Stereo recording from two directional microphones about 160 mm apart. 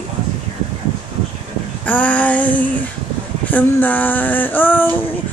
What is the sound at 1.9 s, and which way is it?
Speech, 10° left (ahead or behind).